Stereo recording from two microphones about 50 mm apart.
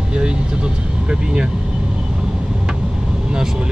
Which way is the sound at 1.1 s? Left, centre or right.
Right.